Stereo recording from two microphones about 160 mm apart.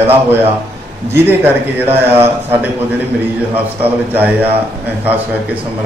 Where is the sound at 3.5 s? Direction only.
10° right (ahead or behind).